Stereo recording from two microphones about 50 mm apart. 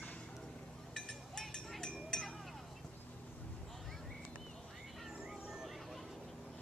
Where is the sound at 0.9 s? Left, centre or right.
Centre.